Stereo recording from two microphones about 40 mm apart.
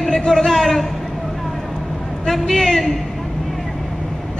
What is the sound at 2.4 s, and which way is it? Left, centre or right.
Speech, centre.